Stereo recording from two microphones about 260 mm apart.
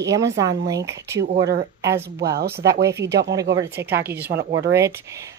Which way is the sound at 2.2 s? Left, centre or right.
Right.